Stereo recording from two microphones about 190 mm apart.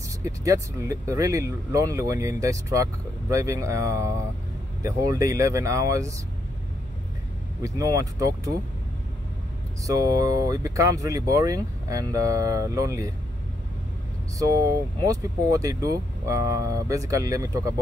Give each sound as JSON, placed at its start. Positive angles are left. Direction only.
{"t": 0.2, "sound": "speech", "side_deg": -15}
{"t": 7.6, "sound": "speech", "side_deg": -15}
{"t": 9.8, "sound": "speech", "side_deg": -20}
{"t": 14.4, "sound": "speech", "side_deg": -15}